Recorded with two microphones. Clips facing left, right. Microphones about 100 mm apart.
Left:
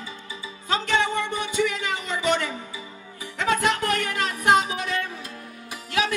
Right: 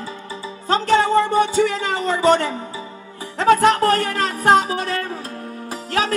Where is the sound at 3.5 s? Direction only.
35° right (ahead or behind).